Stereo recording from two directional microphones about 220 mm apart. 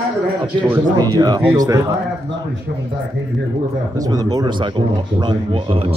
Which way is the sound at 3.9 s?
15° right (ahead or behind).